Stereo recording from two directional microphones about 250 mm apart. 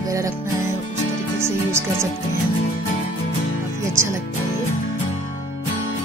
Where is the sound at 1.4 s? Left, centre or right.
Centre.